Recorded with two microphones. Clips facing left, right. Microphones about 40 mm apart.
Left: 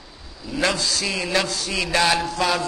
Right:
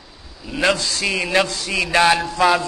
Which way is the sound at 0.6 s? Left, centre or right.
Right.